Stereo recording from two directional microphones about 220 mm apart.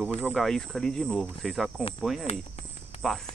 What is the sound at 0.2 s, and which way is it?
Speech, centre (ahead or behind).